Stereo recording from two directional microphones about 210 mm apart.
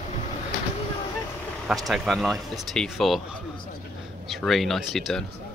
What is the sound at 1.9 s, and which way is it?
Speech, centre (ahead or behind).